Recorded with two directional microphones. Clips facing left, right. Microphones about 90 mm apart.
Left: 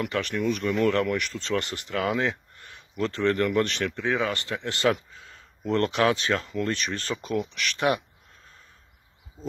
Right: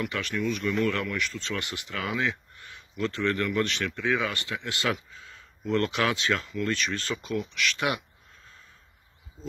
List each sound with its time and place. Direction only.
0.0 s speech: 50° left (ahead or behind)